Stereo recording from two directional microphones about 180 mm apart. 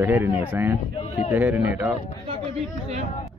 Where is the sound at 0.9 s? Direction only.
35° left (ahead or behind).